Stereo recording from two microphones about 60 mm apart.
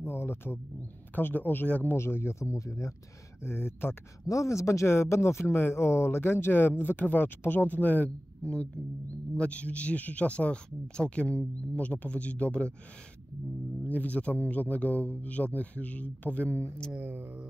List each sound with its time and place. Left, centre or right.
0.0 s wild animals: left
1.1 s speech: left
2.0 s speech: left
3.4 s speech: left
4.3 s speech: left
13.8 s speech: left
17.0 s speech: right